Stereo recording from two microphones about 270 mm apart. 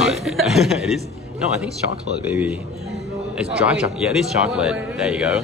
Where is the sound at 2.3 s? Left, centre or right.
Centre.